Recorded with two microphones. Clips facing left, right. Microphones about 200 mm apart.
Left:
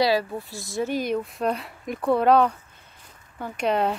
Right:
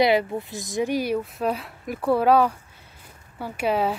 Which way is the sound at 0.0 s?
20° right (ahead or behind).